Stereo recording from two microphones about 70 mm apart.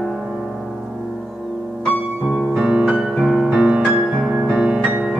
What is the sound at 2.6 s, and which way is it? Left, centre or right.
Music, centre.